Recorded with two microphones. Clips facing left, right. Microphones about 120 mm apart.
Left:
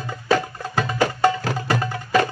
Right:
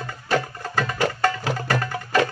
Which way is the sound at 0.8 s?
15° left (ahead or behind).